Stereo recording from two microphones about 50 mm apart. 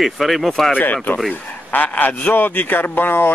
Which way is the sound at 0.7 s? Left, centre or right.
Left.